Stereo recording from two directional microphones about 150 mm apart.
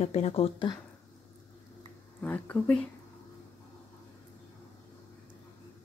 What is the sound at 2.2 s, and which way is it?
Speech, 10° left (ahead or behind).